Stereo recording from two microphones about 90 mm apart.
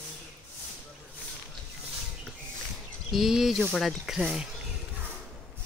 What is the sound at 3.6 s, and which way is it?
Speech, 10° left (ahead or behind).